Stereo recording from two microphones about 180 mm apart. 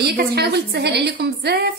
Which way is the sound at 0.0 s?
65° right (ahead or behind).